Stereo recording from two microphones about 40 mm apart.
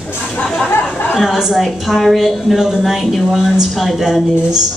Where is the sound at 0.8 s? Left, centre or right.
Left.